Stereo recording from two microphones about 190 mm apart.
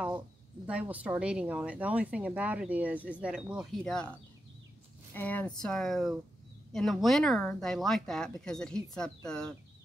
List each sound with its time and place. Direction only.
0.7 s speech: 5° right (ahead or behind)
5.1 s speech: 10° left (ahead or behind)